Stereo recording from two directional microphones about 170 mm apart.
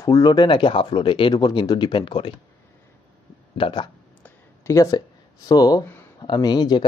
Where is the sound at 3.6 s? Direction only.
30° left (ahead or behind).